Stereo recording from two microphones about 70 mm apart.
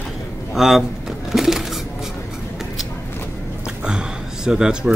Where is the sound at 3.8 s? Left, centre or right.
Centre.